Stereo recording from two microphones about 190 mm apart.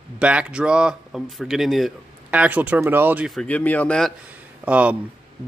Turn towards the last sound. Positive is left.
turn(degrees=-5)  # may be behind; listen again after turning